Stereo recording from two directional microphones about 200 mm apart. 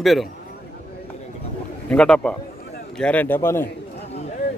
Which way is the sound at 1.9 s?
5° left (ahead or behind).